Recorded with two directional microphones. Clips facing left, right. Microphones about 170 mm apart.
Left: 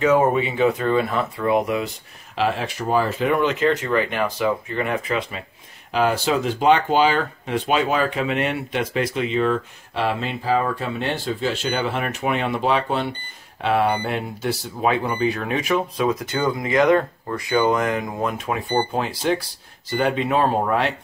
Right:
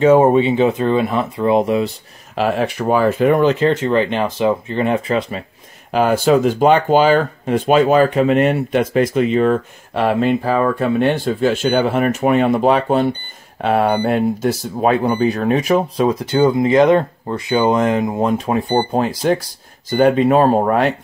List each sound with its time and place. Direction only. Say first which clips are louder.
0.0 s speech: right 7 dB; 30° right (ahead or behind)
2.3 s speech: right 5 dB; 50° right (ahead or behind); by 5.4 s 35° right (ahead or behind)
5.9 s speech: right 6 dB; 50° right (ahead or behind)